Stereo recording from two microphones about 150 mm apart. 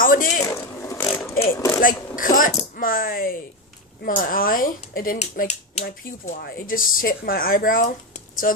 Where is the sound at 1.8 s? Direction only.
65° left (ahead or behind).